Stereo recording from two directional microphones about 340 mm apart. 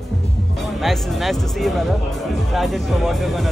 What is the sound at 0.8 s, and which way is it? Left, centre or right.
Speech, centre.